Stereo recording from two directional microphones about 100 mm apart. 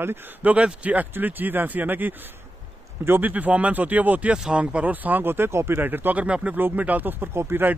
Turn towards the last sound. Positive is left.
turn(degrees=-20)  # may be behind; listen again after turning